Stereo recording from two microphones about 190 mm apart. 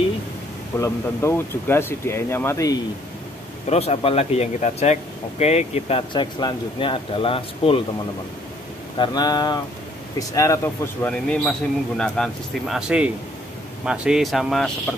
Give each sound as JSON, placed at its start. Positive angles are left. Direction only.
{"t": 0.7, "sound": "speech", "side_deg": 15}
{"t": 3.6, "sound": "speech", "side_deg": 35}
{"t": 8.9, "sound": "speech", "side_deg": 25}